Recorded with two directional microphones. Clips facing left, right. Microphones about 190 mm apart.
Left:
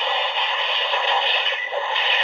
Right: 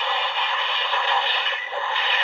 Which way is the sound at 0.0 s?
20° left (ahead or behind).